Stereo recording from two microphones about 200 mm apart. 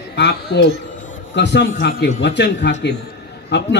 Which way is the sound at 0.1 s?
55° left (ahead or behind).